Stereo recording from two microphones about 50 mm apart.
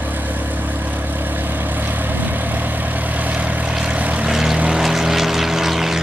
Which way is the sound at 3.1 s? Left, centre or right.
Right.